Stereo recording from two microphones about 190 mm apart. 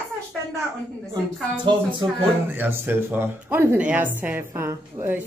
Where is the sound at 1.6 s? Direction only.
25° right (ahead or behind).